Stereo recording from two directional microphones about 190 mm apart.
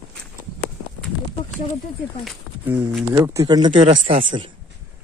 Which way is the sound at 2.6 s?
10° right (ahead or behind).